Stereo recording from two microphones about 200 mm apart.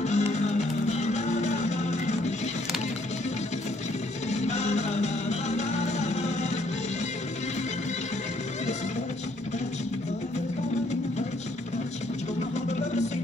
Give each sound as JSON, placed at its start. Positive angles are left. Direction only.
{"t": 0.0, "sound": "music", "side_deg": 35}
{"t": 4.3, "sound": "music", "side_deg": 35}